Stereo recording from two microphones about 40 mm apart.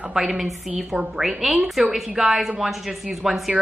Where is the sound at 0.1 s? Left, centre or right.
Centre.